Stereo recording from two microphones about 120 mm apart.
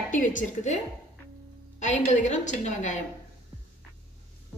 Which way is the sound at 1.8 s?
80° left.